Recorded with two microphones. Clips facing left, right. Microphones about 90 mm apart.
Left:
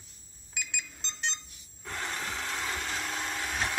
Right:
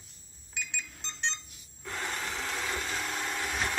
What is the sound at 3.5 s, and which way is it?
Vehicle, centre (ahead or behind).